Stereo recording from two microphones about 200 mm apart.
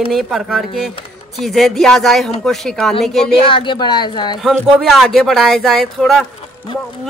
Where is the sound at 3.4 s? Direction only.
25° left (ahead or behind).